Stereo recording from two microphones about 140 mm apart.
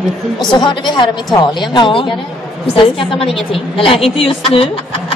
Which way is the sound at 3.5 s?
40° left (ahead or behind).